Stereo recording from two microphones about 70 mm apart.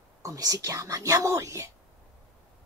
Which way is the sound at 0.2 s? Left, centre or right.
Right.